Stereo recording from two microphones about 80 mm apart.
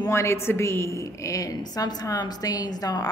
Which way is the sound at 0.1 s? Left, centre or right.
Left.